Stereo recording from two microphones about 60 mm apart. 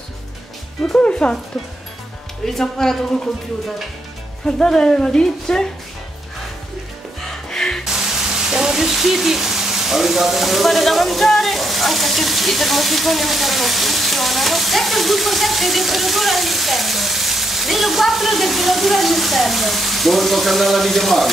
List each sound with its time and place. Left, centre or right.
0.9 s speech: centre
2.4 s speech: centre
4.5 s speech: centre
7.4 s music: centre
7.8 s speech: centre